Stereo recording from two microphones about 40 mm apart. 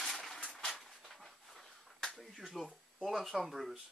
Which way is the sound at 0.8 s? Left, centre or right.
Centre.